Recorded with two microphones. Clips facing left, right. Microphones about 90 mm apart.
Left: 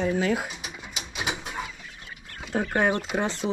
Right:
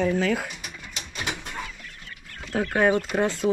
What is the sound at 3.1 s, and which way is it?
Speech, 20° left (ahead or behind).